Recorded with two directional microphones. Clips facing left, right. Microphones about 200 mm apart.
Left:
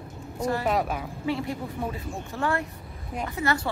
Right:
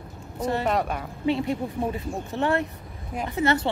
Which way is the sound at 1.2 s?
20° right (ahead or behind).